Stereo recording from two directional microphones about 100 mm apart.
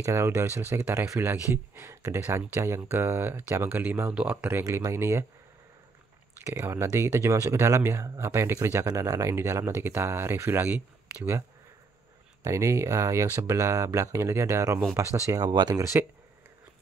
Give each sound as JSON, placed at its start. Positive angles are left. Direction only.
{"t": 0.0, "sound": "speech", "side_deg": -30}
{"t": 6.4, "sound": "speech", "side_deg": -25}
{"t": 12.4, "sound": "speech", "side_deg": -30}
{"t": 15.5, "sound": "speech", "side_deg": -45}
{"t": 15.8, "sound": "speech", "side_deg": -25}